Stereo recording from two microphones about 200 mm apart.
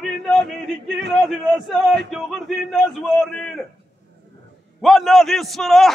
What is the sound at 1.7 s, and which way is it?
A man's voice, centre (ahead or behind).